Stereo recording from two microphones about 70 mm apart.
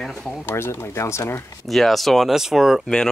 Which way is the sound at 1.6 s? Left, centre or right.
Centre.